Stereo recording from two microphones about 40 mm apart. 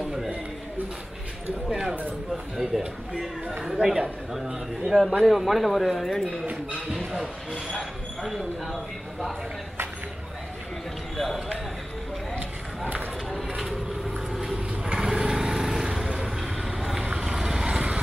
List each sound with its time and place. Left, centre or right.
0.0 s a sound: centre
2.3 s a man's voice: centre
6.5 s speech: centre
7.5 s speech: centre
8.2 s speech: centre
13.6 s vehicle: centre
14.9 s vehicle: right